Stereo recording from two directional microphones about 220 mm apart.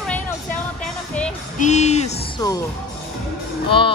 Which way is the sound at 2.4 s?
15° left (ahead or behind).